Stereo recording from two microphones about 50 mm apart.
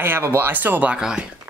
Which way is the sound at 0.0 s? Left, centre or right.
Right.